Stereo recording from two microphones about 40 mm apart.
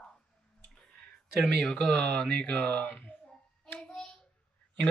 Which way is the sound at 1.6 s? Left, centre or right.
Left.